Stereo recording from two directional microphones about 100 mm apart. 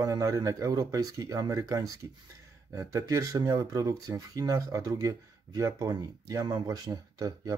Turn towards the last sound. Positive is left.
turn(degrees=-35)  # may be behind; listen again after turning